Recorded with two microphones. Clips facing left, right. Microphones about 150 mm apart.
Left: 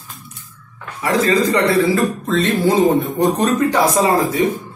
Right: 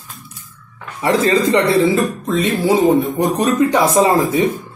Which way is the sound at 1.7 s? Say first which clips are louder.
Right 1 dB; 15° right (ahead or behind).